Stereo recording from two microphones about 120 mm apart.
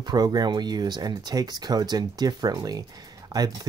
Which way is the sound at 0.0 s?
35° right (ahead or behind).